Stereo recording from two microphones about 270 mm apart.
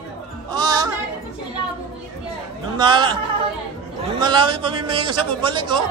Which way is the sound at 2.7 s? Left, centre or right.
Centre.